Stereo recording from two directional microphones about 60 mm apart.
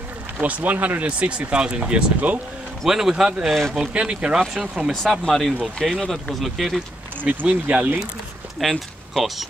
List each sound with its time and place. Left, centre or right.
0.4 s speech: right
2.8 s speech: centre
3.4 s speech: centre
3.7 s speech: centre
5.0 s speech: centre
7.2 s speech: right
8.5 s speech: centre